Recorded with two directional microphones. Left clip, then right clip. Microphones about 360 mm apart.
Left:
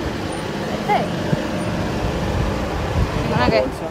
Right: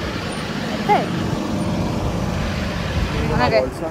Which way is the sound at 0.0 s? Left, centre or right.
Left.